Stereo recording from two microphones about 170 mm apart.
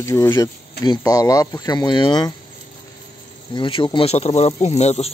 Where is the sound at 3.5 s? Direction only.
30° left (ahead or behind).